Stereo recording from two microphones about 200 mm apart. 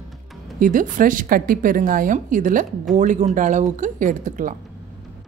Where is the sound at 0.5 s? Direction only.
40° right (ahead or behind).